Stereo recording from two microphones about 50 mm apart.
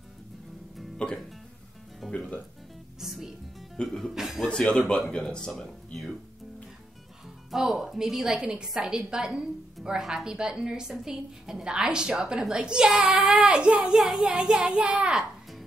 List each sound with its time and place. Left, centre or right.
0.9 s speech: centre
2.0 s music: centre
3.7 s speech: centre
4.1 s a woman's voice: centre
4.5 s speech: centre
7.5 s a woman's voice: centre
13.5 s speech: right
13.8 s speech: centre
14.2 s a woman's voice: centre